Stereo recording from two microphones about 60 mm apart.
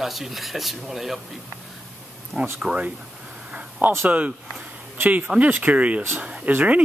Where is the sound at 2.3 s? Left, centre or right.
Centre.